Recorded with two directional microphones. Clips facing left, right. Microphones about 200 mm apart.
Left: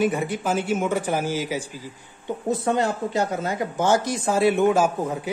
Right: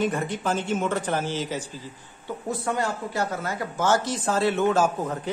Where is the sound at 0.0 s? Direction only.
10° left (ahead or behind).